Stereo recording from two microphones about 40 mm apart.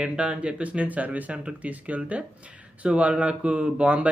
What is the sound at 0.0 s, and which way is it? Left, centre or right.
Speech, right.